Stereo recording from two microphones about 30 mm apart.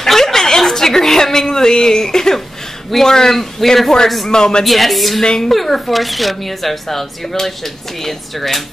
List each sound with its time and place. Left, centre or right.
0.0 s a sound: centre
2.9 s a man's voice: centre
4.3 s a man's voice: left
4.6 s speech: centre
5.2 s a man's voice: left
5.5 s speech: centre